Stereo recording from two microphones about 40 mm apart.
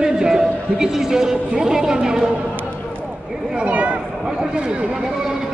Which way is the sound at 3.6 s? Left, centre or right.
Right.